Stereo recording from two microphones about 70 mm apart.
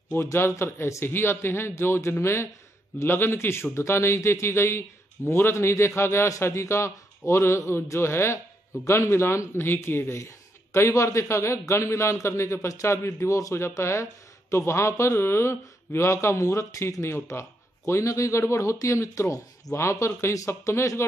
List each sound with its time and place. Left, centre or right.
0.1 s a man's voice: left